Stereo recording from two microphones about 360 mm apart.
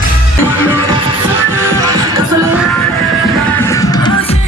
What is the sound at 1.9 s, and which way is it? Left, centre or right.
Music, centre.